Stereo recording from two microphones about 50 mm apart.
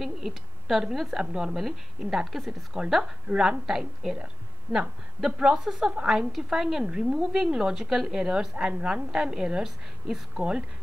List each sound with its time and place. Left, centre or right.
0.0 s a woman's voice: centre
6.8 s a woman's voice: right